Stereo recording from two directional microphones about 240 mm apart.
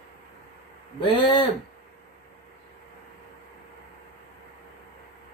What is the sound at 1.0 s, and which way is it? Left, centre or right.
Speech, left.